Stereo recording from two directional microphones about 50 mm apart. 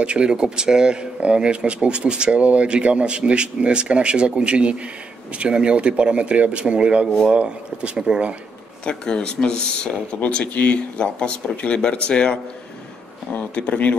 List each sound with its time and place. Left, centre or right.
0.0 s speech: centre
8.8 s speech: centre
10.4 s speech: left